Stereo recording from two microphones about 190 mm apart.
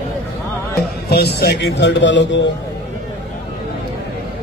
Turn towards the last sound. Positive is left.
turn(degrees=70)  # may be behind; listen again after turning